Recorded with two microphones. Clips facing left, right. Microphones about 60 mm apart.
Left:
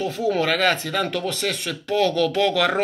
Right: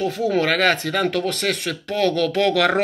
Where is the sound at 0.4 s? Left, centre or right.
Right.